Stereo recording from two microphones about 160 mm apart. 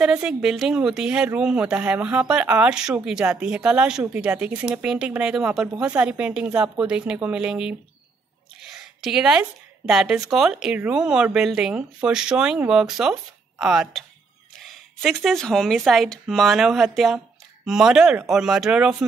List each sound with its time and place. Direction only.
0.0 s speech: 5° right (ahead or behind)
8.7 s speech: 5° right (ahead or behind)